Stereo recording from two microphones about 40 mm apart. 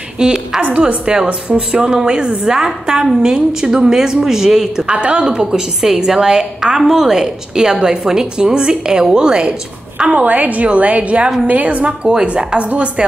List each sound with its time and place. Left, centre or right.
0.2 s a woman's voice: centre
0.6 s a woman's voice: right
1.1 s a woman's voice: right
4.9 s a woman's voice: right
5.2 s a woman's voice: centre
10.2 s a woman's voice: right